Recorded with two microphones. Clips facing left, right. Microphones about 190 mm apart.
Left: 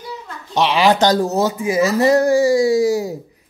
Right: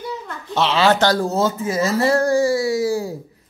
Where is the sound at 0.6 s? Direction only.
15° left (ahead or behind).